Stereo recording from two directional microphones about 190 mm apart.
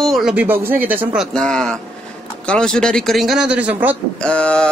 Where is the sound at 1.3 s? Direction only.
5° left (ahead or behind).